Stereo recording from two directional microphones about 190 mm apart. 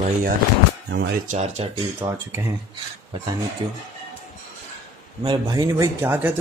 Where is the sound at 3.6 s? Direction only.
25° right (ahead or behind).